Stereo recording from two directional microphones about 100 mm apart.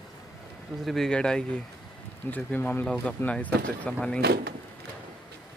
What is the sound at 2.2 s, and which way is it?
Speech, 20° left (ahead or behind).